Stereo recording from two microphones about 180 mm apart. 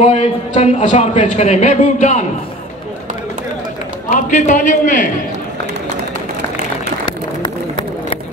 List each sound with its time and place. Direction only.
0.0 s a man's voice: 35° left (ahead or behind)
4.1 s a man's voice: 45° left (ahead or behind)
7.1 s run: 25° left (ahead or behind)